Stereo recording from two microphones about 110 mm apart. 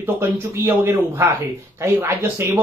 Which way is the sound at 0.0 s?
25° right (ahead or behind).